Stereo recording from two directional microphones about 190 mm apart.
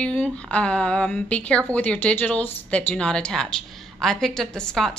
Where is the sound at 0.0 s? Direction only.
5° left (ahead or behind).